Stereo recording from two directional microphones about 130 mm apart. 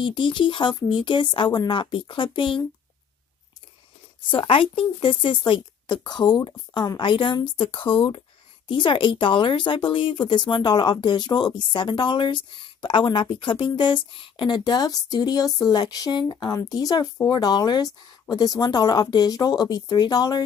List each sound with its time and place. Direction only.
0.0 s speech: 40° left (ahead or behind)
4.3 s speech: 40° left (ahead or behind)